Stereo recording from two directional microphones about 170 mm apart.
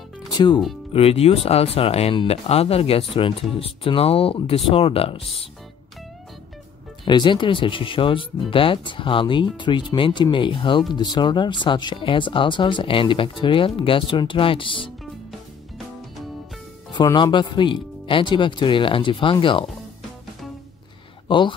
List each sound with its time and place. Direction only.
0.3 s music: 25° left (ahead or behind)
0.9 s speech: 35° left (ahead or behind)
7.1 s speech: 25° left (ahead or behind)
16.9 s speech: 25° left (ahead or behind)
21.3 s speech: 30° left (ahead or behind)